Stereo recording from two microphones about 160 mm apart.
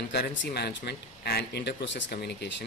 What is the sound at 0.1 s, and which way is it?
Speech, 85° left.